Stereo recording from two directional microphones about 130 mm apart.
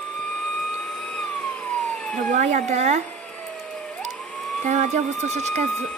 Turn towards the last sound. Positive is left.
turn(degrees=-60)  # may be behind; listen again after turning